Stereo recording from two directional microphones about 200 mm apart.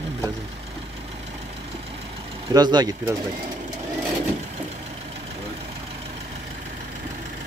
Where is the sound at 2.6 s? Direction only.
20° right (ahead or behind).